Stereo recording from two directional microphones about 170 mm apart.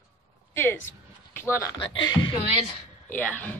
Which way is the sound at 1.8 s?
30° left (ahead or behind).